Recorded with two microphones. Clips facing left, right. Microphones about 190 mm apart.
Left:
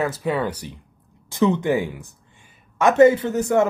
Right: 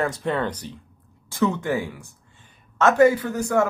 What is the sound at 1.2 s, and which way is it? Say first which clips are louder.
A man's voice: left 4 dB; 20° left (ahead or behind).